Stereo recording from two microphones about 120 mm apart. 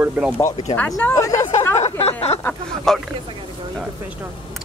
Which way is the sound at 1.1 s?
25° left (ahead or behind).